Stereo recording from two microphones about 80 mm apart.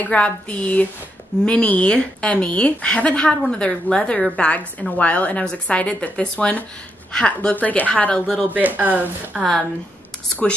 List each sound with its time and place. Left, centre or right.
0.0 s a woman's voice: centre
8.5 s speech: right